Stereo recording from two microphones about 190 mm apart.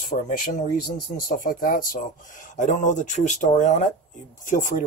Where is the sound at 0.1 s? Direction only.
50° left (ahead or behind).